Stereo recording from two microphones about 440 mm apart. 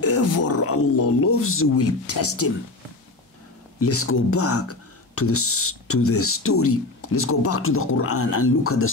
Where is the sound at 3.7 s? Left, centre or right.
Left.